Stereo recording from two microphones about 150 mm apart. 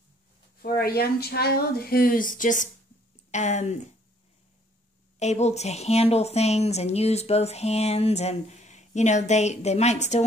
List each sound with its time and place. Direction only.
0.6 s a woman's voice: 90° left; by 3.9 s 50° left (ahead or behind)
5.2 s speech: 50° left (ahead or behind)